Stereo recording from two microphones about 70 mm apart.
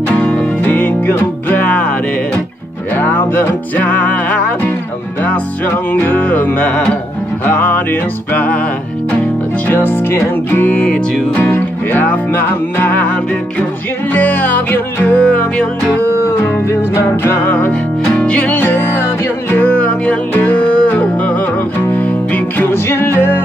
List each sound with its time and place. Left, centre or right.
0.1 s music: centre
3.0 s music: left
5.9 s music: left
9.7 s music: left
10.7 s music: centre
16.6 s music: left
17.6 s music: centre
18.6 s music: left
19.5 s music: left
22.8 s music: left